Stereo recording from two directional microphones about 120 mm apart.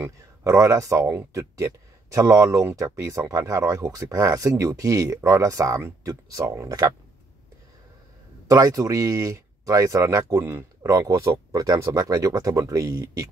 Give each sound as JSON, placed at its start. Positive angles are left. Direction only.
{"t": 0.0, "sound": "speech", "side_deg": -25}
{"t": 8.5, "sound": "speech", "side_deg": -30}